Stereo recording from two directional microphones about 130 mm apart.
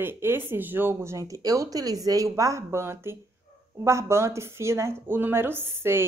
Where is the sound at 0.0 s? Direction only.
15° right (ahead or behind).